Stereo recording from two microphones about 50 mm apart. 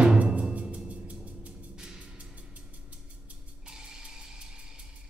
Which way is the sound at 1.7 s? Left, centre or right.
Centre.